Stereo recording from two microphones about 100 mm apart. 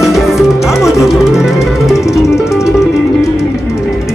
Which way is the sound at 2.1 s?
30° left (ahead or behind).